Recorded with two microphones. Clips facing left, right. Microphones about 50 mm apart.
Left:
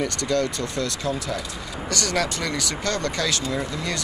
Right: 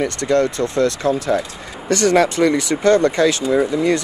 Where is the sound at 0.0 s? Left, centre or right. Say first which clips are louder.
Right 7 dB; right.